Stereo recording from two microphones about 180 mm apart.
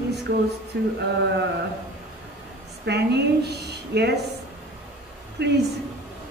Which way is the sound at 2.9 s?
65° right (ahead or behind).